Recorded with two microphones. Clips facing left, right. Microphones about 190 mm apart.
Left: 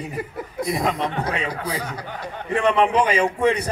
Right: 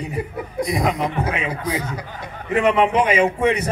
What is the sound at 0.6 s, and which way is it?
Speech, centre (ahead or behind).